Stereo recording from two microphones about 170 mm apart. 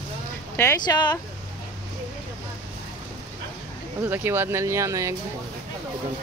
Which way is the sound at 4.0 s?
15° right (ahead or behind).